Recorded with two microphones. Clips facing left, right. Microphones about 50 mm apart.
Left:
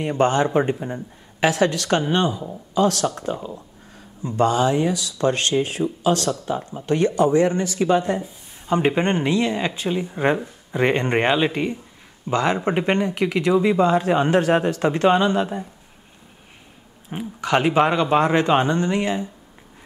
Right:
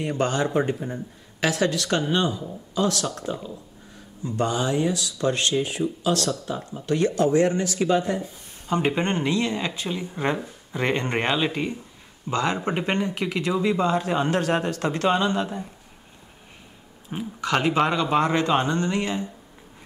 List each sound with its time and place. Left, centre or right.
0.0 s speech: left
4.8 s speech: centre
5.2 s speech: left
17.1 s speech: centre